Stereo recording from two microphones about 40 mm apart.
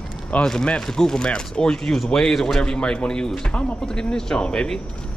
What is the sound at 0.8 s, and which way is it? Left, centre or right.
Speech, centre.